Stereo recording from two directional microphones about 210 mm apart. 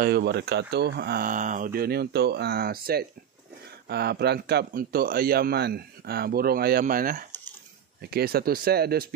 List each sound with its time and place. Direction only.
0.0 s a man's voice: 50° right (ahead or behind)